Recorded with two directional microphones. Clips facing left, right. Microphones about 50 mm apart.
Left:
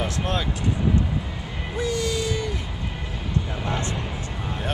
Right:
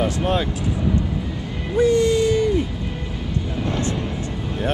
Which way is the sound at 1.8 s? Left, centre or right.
Right.